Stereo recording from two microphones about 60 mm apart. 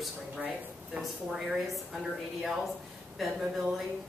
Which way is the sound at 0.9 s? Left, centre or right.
Centre.